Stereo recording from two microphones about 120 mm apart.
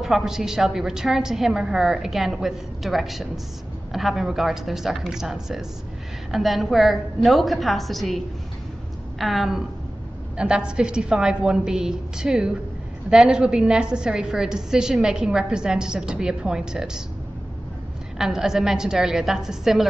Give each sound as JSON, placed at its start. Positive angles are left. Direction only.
{"t": 0.0, "sound": "a woman's voice", "side_deg": 0}
{"t": 9.2, "sound": "a woman's voice", "side_deg": 0}
{"t": 18.1, "sound": "a woman's voice", "side_deg": -5}